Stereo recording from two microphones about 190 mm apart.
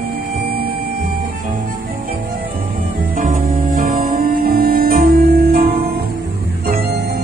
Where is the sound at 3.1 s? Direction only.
50° right (ahead or behind).